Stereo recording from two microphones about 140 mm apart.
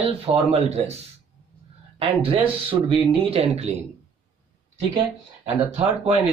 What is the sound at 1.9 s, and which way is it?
Speech, 40° right (ahead or behind).